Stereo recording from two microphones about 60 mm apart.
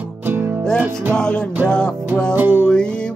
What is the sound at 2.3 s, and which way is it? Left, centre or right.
Music, right.